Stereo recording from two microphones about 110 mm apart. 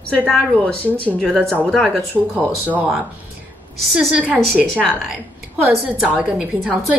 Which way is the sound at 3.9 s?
5° right (ahead or behind).